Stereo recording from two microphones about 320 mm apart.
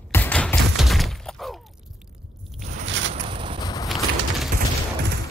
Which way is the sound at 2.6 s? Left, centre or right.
Right.